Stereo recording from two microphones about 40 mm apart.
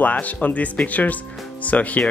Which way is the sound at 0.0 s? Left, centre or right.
Left.